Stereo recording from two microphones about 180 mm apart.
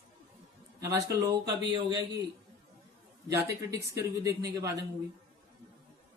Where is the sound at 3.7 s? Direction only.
15° right (ahead or behind).